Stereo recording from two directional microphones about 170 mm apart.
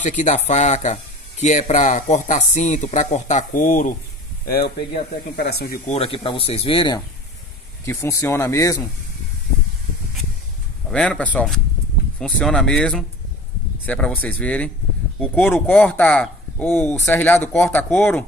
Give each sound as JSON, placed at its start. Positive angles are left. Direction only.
{"t": 0.0, "sound": "speech", "side_deg": 45}
{"t": 5.9, "sound": "speech", "side_deg": 35}
{"t": 7.8, "sound": "speech", "side_deg": 15}
{"t": 10.9, "sound": "speech", "side_deg": 5}